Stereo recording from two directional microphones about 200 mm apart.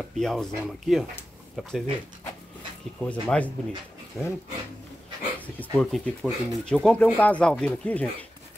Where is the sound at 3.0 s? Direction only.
5° left (ahead or behind).